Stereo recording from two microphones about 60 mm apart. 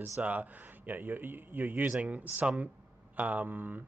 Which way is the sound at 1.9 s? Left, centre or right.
Right.